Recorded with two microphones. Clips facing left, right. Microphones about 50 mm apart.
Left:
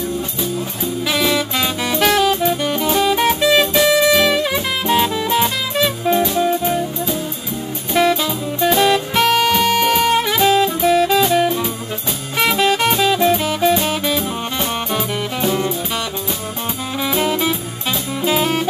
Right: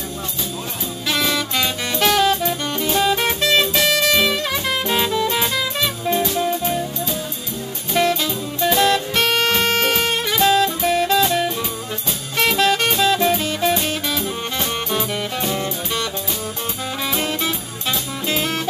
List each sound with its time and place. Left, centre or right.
1.0 s music: centre
10.1 s saxophone: centre
10.9 s music: centre
17.0 s music: centre